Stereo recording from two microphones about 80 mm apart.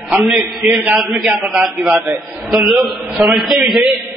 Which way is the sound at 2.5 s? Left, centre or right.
Centre.